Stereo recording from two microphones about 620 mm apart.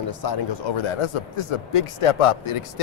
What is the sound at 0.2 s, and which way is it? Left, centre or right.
Speech, left.